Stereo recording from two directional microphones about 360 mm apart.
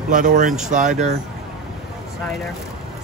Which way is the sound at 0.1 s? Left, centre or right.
Right.